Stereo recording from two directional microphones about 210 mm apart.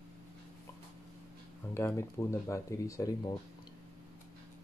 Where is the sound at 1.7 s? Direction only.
10° left (ahead or behind).